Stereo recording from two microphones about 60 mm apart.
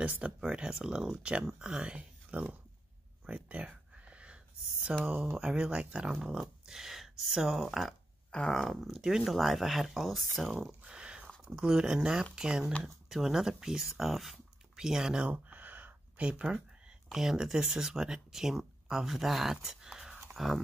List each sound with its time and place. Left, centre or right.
0.0 s speech: right
0.4 s speech: centre
3.3 s a sound: right
5.0 s speech: right; by 10.8 s centre
10.8 s a sound: centre
11.4 s speech: centre
15.2 s a sound: right
16.2 s speech: centre
17.1 s speech: centre